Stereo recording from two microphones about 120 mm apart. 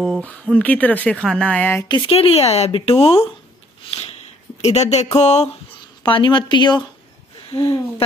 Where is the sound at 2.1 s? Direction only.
60° left (ahead or behind).